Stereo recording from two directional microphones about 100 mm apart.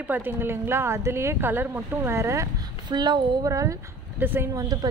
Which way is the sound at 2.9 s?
45° right (ahead or behind).